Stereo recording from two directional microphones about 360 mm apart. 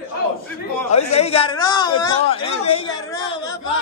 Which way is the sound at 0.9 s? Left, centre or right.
Centre.